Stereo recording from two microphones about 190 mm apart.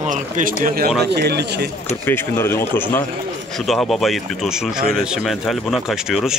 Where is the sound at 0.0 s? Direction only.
40° right (ahead or behind).